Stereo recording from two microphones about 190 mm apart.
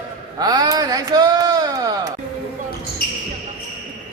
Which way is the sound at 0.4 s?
20° right (ahead or behind).